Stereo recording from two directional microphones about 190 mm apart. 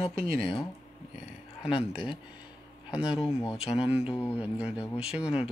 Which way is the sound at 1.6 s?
30° left (ahead or behind).